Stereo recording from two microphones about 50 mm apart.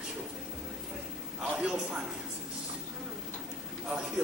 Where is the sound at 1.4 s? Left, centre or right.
Centre.